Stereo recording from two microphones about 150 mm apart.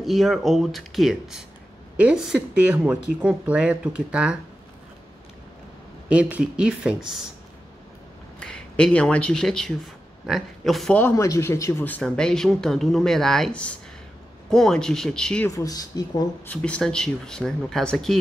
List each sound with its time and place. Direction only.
0.0 s speech: centre (ahead or behind)
6.0 s speech: 10° right (ahead or behind)
8.4 s speech: 5° left (ahead or behind)
11.0 s speech: 15° left (ahead or behind)
15.4 s speech: 25° left (ahead or behind)
16.4 s speech: 10° left (ahead or behind)